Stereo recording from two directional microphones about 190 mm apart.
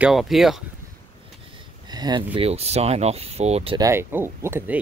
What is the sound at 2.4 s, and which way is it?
Speech, 35° right (ahead or behind).